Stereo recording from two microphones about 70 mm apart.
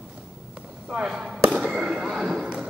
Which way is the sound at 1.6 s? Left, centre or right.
Centre.